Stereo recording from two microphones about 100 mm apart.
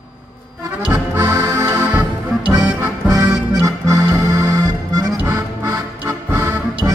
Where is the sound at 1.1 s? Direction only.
35° right (ahead or behind).